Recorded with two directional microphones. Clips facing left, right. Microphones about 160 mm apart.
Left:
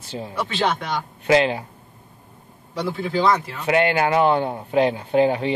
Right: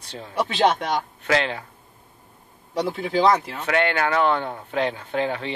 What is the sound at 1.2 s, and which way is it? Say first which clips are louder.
Speech: left 8 dB; 15° left (ahead or behind).